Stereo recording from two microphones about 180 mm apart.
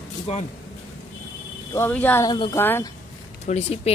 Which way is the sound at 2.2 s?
20° left (ahead or behind).